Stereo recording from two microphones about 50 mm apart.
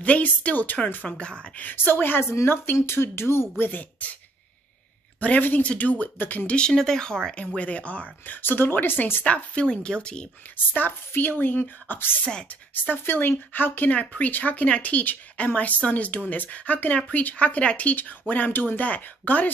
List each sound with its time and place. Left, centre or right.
0.0 s speech: left
1.0 s speech: left
1.6 s speech: left
3.6 s speech: left
5.4 s speech: left
6.7 s speech: centre
7.4 s speech: left
8.4 s speech: left
9.2 s speech: left
10.7 s speech: left
12.3 s speech: centre
12.9 s speech: left
13.9 s speech: left